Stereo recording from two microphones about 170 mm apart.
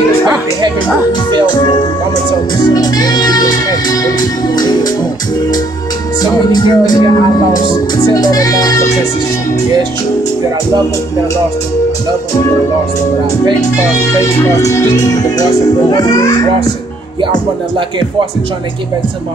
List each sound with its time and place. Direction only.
1.5 s speech: 25° left (ahead or behind)
6.5 s speech: 25° left (ahead or behind)
13.9 s speech: 20° left (ahead or behind)